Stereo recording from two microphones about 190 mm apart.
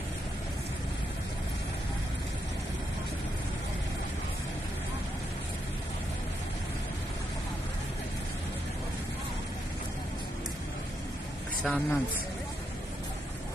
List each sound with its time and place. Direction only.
11.6 s speech: 5° left (ahead or behind)